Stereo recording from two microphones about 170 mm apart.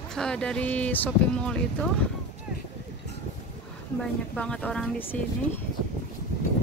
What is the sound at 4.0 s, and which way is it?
A woman's voice, 5° left (ahead or behind).